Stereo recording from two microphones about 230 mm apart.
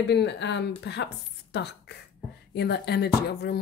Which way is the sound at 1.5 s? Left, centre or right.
Left.